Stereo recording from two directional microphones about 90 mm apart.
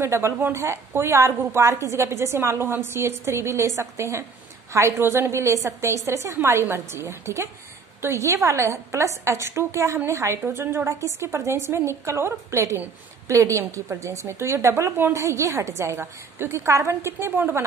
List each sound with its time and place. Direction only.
0.0 s a woman's voice: 30° right (ahead or behind)